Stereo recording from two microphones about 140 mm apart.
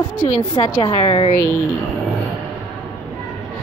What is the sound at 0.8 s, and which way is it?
Speech, 40° left (ahead or behind).